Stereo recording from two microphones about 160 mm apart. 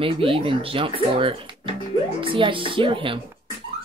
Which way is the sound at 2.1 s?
30° right (ahead or behind).